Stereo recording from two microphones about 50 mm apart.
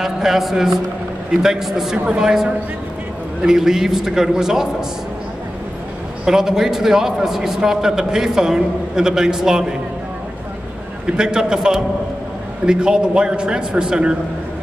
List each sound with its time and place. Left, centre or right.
0.0 s a man's voice: centre
6.2 s a man's voice: centre
11.1 s a man's voice: centre